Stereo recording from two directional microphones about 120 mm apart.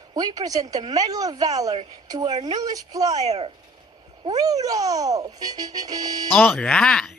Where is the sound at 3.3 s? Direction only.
55° right (ahead or behind).